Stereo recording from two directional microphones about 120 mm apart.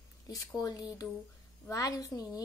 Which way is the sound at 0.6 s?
30° left (ahead or behind).